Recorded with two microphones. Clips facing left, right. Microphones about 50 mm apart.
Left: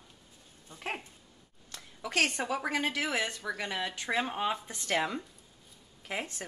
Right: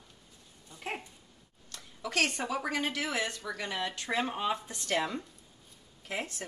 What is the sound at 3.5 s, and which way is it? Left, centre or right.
Speech, centre.